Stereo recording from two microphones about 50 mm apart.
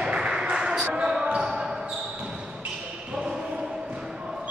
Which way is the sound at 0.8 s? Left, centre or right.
Right.